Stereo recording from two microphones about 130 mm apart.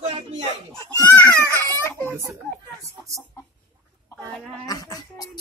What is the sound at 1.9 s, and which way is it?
Chicken, 15° left (ahead or behind).